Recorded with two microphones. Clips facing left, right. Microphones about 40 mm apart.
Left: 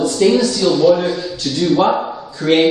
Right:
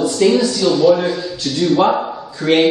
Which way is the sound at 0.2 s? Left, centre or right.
Centre.